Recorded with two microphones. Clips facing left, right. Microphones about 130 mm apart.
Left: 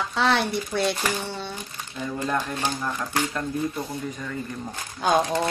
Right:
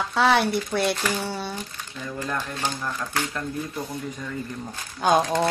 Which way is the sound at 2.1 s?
15° left (ahead or behind).